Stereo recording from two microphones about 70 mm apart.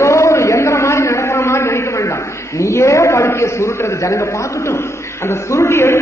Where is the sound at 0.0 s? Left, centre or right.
Left.